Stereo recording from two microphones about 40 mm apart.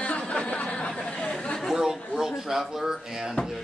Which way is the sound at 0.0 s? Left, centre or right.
Left.